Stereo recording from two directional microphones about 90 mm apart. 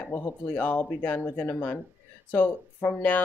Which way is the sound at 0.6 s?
15° left (ahead or behind).